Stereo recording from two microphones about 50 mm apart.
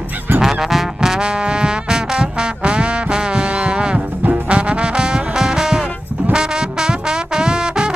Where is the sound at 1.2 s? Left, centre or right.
Centre.